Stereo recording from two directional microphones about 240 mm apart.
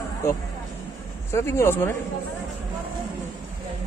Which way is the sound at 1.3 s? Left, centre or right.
Centre.